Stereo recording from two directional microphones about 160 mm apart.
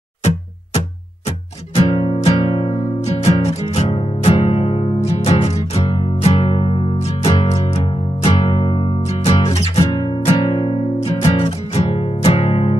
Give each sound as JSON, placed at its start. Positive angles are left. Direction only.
{"t": 1.8, "sound": "music", "side_deg": 35}
{"t": 9.8, "sound": "music", "side_deg": 30}